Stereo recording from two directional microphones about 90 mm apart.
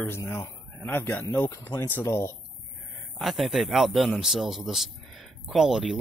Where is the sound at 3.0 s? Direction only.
Centre (ahead or behind).